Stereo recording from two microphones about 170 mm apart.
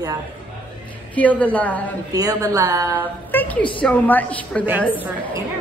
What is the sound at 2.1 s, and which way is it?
Speech, 20° right (ahead or behind).